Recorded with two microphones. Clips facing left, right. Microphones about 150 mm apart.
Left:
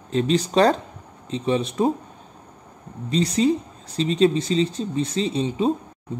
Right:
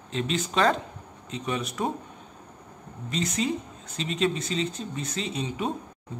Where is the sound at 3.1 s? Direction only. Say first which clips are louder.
Left 8 dB; 35° left (ahead or behind).